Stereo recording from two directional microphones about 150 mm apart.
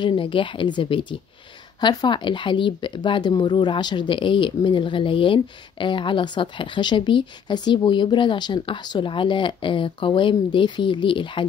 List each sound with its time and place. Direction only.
0.0 s speech: 35° left (ahead or behind)